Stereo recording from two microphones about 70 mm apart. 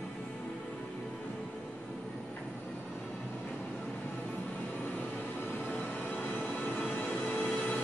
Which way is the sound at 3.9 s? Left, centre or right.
Left.